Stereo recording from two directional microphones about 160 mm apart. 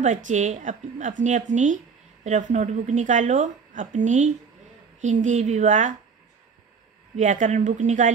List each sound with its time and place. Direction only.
0.0 s a woman's voice: 50° right (ahead or behind)
7.2 s a woman's voice: 50° right (ahead or behind)